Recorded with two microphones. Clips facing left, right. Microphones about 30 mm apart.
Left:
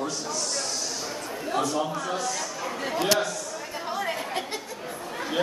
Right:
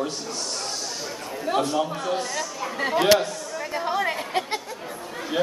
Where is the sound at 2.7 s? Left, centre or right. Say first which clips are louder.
Right 6 dB; right.